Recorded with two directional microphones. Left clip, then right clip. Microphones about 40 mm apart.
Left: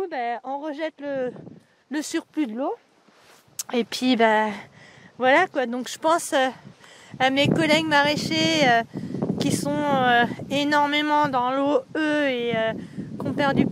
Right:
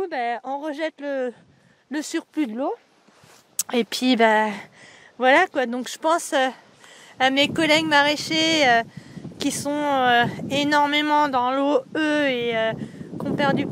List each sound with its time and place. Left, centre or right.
0.0 s speech: right
1.9 s speech: centre
2.3 s speech: right
3.5 s speech: right
5.9 s speech: centre
7.1 s a woman's voice: centre
13.2 s speech: centre